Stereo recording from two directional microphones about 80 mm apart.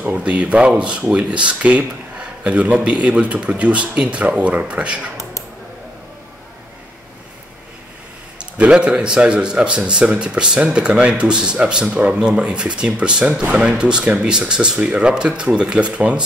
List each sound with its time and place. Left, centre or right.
0.0 s speech: centre
8.5 s speech: centre